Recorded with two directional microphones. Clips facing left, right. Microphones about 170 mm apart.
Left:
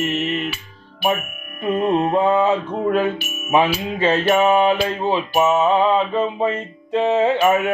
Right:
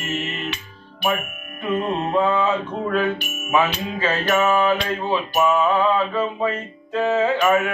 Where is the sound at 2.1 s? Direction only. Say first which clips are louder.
Left 3 dB; 30° left (ahead or behind).